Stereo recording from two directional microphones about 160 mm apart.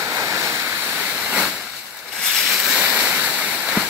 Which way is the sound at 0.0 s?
20° right (ahead or behind).